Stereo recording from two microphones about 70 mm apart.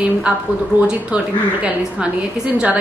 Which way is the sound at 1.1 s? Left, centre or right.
Right.